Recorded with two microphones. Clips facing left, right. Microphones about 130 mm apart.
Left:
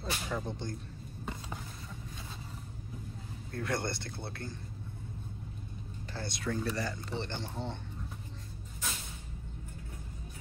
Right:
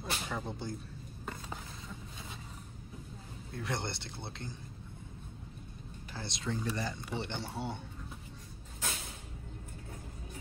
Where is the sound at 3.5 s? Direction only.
20° right (ahead or behind).